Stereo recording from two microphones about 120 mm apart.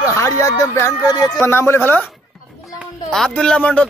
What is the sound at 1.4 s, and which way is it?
Speech, 20° left (ahead or behind).